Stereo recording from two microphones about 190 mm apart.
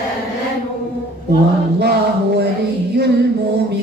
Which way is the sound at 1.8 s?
60° right (ahead or behind).